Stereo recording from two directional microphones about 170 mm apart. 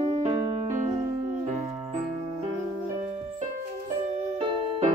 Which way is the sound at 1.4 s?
45° right (ahead or behind).